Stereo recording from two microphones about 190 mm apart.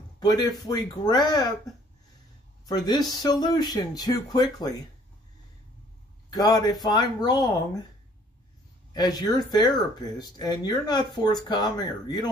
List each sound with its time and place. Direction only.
0.2 s speech: 20° left (ahead or behind)
2.6 s speech: 20° left (ahead or behind)
6.3 s speech: 20° left (ahead or behind)
8.9 s speech: 20° left (ahead or behind)